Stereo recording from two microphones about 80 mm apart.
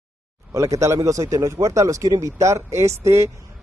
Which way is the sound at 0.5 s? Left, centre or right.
Right.